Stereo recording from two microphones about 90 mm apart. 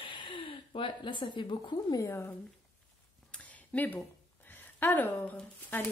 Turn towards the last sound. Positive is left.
turn(degrees=20)  # may be behind; listen again after turning